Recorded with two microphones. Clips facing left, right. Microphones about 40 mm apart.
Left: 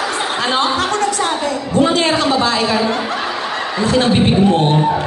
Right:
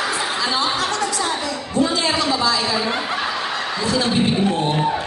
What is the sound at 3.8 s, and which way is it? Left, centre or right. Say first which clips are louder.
Music: left 6 dB; left.